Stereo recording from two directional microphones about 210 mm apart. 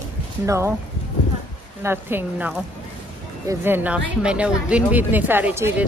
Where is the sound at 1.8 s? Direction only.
10° right (ahead or behind).